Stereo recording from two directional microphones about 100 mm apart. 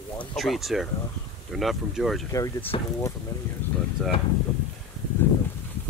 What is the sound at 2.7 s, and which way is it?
Speech, 65° left (ahead or behind).